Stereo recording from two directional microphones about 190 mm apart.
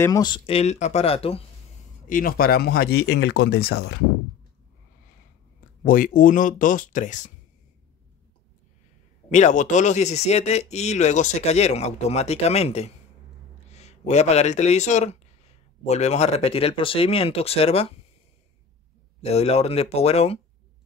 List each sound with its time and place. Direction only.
0.0 s speech: 20° left (ahead or behind)
2.0 s speech: 45° left (ahead or behind); by 4.0 s 70° left (ahead or behind)
5.9 s speech: 45° left (ahead or behind)
9.3 s speech: 40° left (ahead or behind)
19.2 s speech: 35° left (ahead or behind)